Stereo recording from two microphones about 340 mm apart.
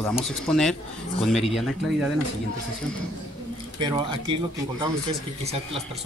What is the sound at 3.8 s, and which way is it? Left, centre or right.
Speech, centre.